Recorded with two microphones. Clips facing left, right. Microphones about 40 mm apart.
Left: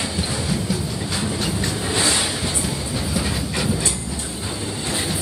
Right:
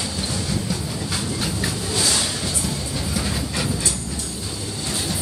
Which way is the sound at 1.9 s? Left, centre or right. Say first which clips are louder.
Left 3 dB; left.